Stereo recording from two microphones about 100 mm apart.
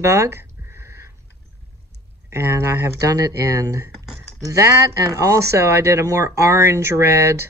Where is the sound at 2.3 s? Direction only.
25° right (ahead or behind).